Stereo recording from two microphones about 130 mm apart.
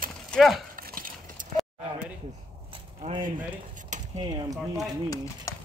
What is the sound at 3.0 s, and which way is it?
Speech, 45° right (ahead or behind).